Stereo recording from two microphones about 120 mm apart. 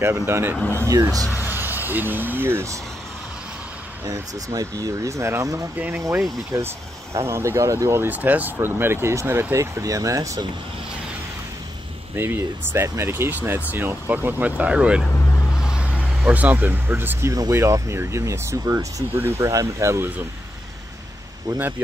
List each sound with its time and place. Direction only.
0.3 s speech: 20° right (ahead or behind)
0.6 s speech: 15° left (ahead or behind)
1.5 s speech: 15° right (ahead or behind)
4.0 s speech: 25° right (ahead or behind)
5.8 s speech: 15° right (ahead or behind)
12.2 s speech: 15° right (ahead or behind)
15.0 s vehicle: 20° left (ahead or behind)
15.6 s speech: 10° right (ahead or behind); by 20.1 s 25° right (ahead or behind)
21.5 s speech: 15° right (ahead or behind)